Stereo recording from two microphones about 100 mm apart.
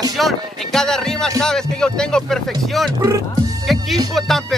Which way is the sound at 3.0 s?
35° right (ahead or behind).